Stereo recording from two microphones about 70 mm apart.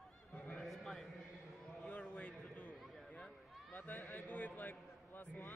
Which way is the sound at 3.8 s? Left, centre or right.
Left.